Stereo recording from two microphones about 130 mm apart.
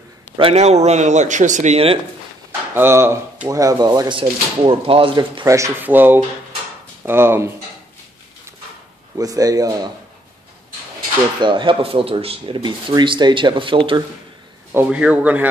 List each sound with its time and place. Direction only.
0.4 s speech: 50° right (ahead or behind)
2.7 s speech: 20° right (ahead or behind)
4.2 s speech: 45° right (ahead or behind)
5.5 s speech: 20° right (ahead or behind)
9.1 s speech: 30° right (ahead or behind)
11.4 s speech: 40° right (ahead or behind)
14.7 s speech: 15° right (ahead or behind)